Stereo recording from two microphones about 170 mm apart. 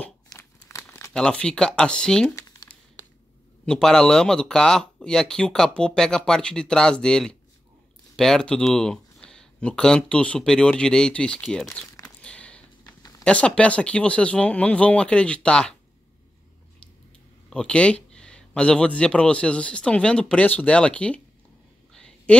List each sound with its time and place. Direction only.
0.3 s crumpling: 20° left (ahead or behind)
1.1 s speech: 5° left (ahead or behind)
3.6 s speech: 5° left (ahead or behind)
17.5 s speech: 5° left (ahead or behind)
21.9 s a sound: 5° left (ahead or behind)